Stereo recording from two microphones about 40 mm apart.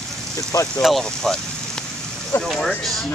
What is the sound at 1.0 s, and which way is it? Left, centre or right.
Speech, centre.